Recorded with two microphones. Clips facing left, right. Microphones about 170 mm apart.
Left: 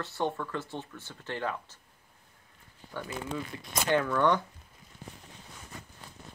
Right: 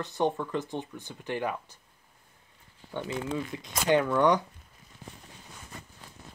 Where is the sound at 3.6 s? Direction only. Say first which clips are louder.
Right 3 dB; 15° right (ahead or behind).